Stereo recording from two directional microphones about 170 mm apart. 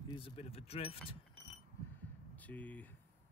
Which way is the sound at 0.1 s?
35° left (ahead or behind).